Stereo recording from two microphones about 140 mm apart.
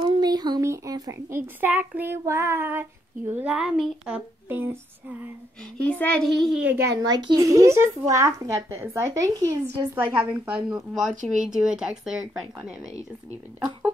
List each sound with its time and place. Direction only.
0.0 s speech: 35° right (ahead or behind); by 5.3 s 10° right (ahead or behind)
5.8 s a woman's voice: 10° left (ahead or behind); by 6.8 s 5° right (ahead or behind)
7.0 s a woman's voice: 30° right (ahead or behind)
10.3 s a woman's voice: 10° right (ahead or behind)